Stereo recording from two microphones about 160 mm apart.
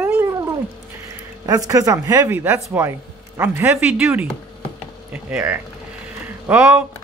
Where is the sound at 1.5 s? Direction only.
20° right (ahead or behind); by 6.9 s 5° right (ahead or behind).